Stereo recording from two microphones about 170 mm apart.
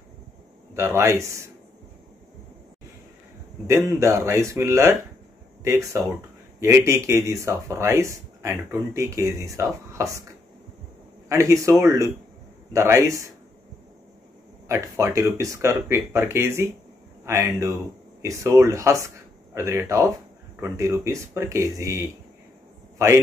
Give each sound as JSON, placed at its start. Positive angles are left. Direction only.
{"t": 0.7, "sound": "speech", "side_deg": -15}
{"t": 3.6, "sound": "speech", "side_deg": -15}
{"t": 11.2, "sound": "speech", "side_deg": -15}
{"t": 14.7, "sound": "a man's voice", "side_deg": -15}